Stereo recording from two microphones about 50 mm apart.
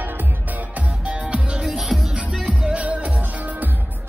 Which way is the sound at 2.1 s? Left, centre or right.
Right.